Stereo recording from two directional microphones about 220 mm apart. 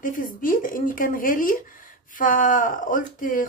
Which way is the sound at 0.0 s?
40° left (ahead or behind).